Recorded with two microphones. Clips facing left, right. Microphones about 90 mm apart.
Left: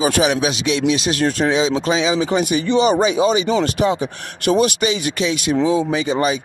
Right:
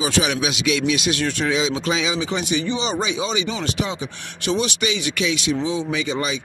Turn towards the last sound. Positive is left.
turn(degrees=35)  # may be behind; listen again after turning